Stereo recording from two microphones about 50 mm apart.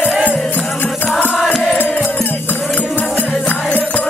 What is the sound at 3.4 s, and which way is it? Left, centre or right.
Music, left.